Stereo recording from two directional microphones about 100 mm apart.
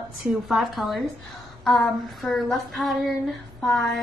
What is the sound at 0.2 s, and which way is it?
Female singing, 5° right (ahead or behind).